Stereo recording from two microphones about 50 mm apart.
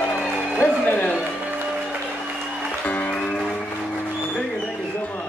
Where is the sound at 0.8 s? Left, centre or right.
Left.